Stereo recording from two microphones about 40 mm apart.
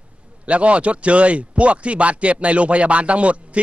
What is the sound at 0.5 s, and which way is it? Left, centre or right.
Speech, right.